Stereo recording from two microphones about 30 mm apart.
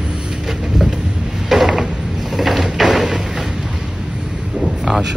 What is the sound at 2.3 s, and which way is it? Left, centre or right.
Door, centre.